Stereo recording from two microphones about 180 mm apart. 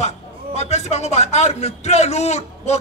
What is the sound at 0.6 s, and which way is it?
A man's voice, 40° left (ahead or behind).